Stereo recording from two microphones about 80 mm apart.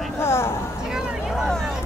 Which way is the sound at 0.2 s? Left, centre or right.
Left.